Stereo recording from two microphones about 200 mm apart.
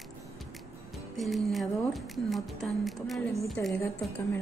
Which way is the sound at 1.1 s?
Centre (ahead or behind).